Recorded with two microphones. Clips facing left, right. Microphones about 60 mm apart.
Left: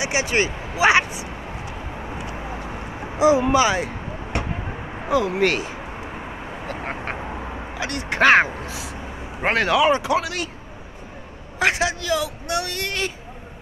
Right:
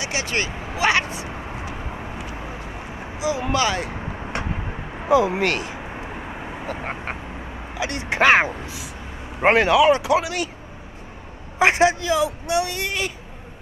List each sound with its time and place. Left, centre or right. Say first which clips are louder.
0.0 s speech: left 4 dB; centre
3.2 s speech: left 8 dB; left
3.4 s speech: left 3 dB; centre
5.0 s speech: right 3 dB; centre
5.4 s speech: left 2 dB; centre
7.9 s speech: even; right
8.2 s speech: left 1 dB; centre
9.4 s speech: right 4 dB; centre
9.8 s speech: right 2 dB; centre
11.5 s a man's voice: right 4 dB; right
12.1 s speech: right 3 dB; centre